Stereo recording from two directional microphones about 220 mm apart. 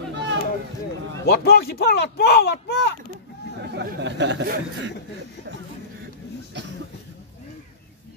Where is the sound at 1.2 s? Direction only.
45° left (ahead or behind).